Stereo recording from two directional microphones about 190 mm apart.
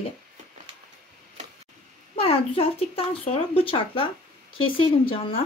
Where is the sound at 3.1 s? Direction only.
30° left (ahead or behind).